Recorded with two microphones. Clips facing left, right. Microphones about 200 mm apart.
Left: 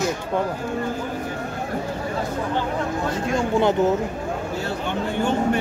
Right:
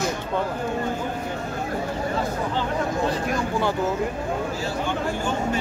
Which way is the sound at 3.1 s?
20° left (ahead or behind).